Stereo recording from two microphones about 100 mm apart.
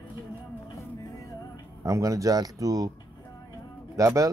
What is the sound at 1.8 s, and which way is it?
Speech, 30° right (ahead or behind).